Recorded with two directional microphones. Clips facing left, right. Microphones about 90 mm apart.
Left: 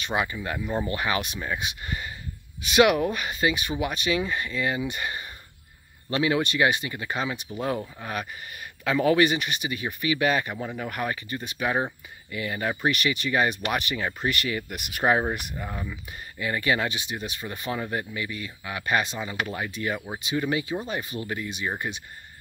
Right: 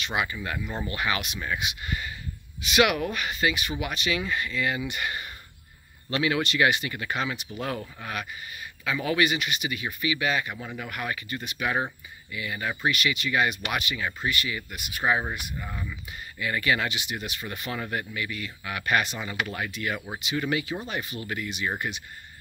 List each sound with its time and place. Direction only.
0.0 s speech: 30° left (ahead or behind)
8.8 s speech: 40° left (ahead or behind)
14.3 s speech: 50° left (ahead or behind)
15.2 s speech: 30° left (ahead or behind)